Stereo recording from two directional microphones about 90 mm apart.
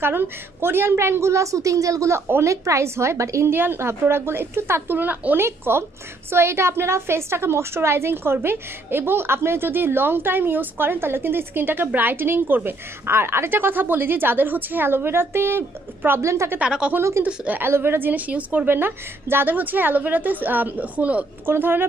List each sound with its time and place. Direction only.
0.0 s a woman's voice: 25° right (ahead or behind)
16.5 s a woman's voice: 10° right (ahead or behind)